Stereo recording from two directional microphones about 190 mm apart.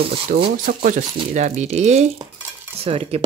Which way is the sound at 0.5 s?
45° right (ahead or behind).